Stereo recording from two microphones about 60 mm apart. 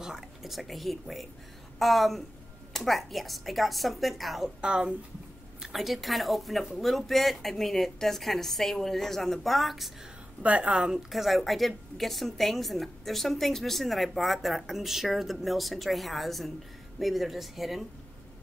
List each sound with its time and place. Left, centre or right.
0.0 s a woman's voice: centre
4.6 s a woman's voice: centre
5.6 s a woman's voice: centre
10.4 s a woman's voice: right
10.8 s a woman's voice: centre